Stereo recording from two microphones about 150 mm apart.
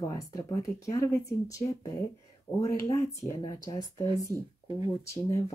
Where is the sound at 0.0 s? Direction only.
20° left (ahead or behind).